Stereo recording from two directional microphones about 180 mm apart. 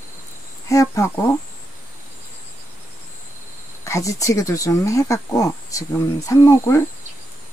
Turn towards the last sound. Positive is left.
turn(degrees=15)  # may be behind; listen again after turning